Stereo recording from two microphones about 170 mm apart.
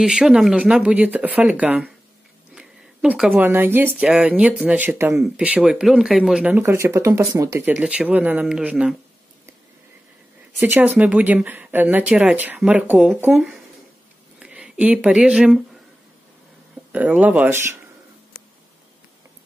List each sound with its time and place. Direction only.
0.0 s speech: 5° right (ahead or behind)
7.7 s speech: 5° right (ahead or behind)
10.6 s speech: 10° right (ahead or behind)
16.9 s speech: 10° right (ahead or behind)